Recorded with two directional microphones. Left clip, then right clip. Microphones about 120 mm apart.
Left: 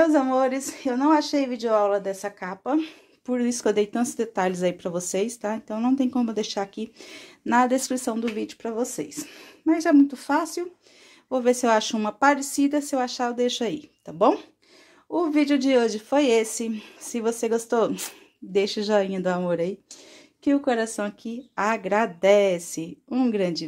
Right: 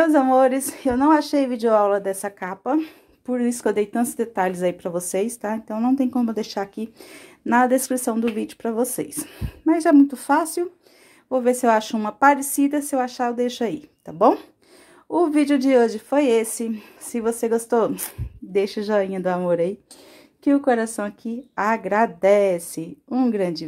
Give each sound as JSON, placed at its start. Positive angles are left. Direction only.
{"t": 0.0, "sound": "a woman's voice", "side_deg": -50}
{"t": 2.6, "sound": "speech", "side_deg": -25}
{"t": 11.2, "sound": "speech", "side_deg": -20}
{"t": 15.0, "sound": "a woman's voice", "side_deg": -50}
{"t": 15.6, "sound": "speech", "side_deg": -25}